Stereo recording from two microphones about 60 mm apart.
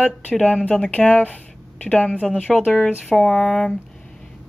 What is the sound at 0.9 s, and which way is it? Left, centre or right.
Speech, left.